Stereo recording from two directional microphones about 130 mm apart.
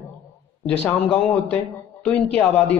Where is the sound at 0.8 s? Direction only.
15° left (ahead or behind).